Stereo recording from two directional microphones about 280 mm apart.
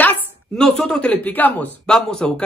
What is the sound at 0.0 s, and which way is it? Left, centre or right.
Speech, centre.